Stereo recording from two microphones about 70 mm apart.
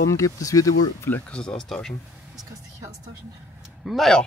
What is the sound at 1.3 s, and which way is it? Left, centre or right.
Speech, centre.